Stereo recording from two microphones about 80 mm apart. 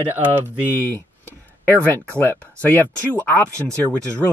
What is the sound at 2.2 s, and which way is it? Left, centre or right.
Speech, centre.